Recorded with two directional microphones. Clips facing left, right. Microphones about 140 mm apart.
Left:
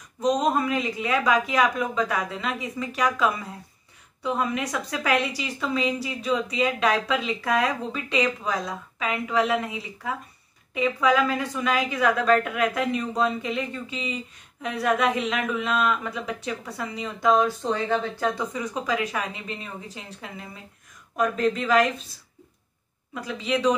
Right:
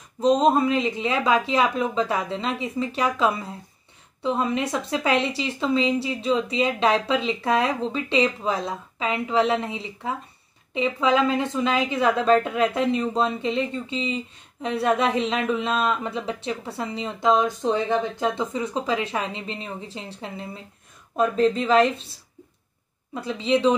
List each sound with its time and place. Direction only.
0.2 s speech: 30° right (ahead or behind)
23.1 s speech: 30° right (ahead or behind)